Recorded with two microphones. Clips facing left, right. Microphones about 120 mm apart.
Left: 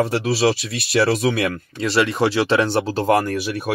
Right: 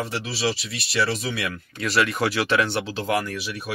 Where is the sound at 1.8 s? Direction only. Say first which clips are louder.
Left 4 dB; 25° left (ahead or behind); by 3.7 s 50° left (ahead or behind).